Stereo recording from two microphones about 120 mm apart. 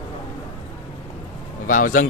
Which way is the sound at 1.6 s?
90° left.